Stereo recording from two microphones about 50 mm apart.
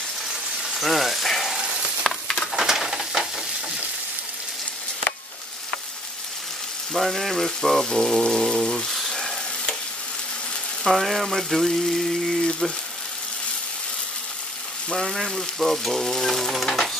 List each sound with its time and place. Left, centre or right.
0.6 s frying: centre
1.6 s frying: centre
2.0 s a sound: centre
2.5 s bird: centre
6.9 s frying: centre
10.8 s frying: centre
12.4 s frying: centre
14.9 s frying: centre